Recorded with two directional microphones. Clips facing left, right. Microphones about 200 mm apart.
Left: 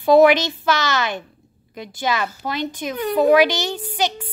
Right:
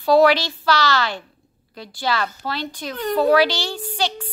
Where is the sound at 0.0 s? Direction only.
20° left (ahead or behind).